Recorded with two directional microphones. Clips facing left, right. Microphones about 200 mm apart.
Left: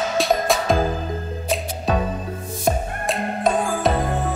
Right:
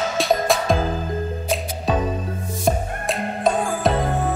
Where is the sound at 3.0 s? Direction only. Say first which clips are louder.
Even; centre (ahead or behind).